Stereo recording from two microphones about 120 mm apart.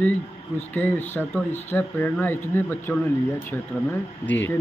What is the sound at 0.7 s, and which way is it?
Speech, 15° left (ahead or behind).